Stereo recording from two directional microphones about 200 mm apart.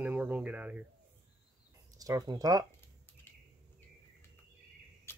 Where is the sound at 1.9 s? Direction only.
20° right (ahead or behind).